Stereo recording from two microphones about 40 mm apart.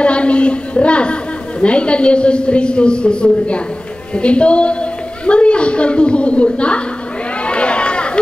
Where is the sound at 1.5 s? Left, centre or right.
Left.